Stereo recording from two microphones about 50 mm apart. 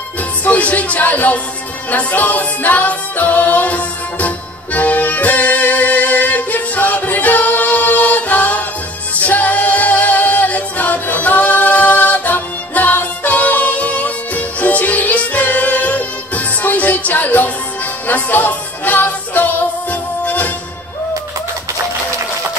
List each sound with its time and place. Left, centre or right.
0.4 s speech: left
1.9 s music: left
9.1 s a capella: left
18.0 s music: left